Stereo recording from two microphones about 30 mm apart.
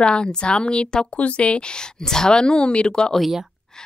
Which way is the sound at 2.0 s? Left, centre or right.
Left.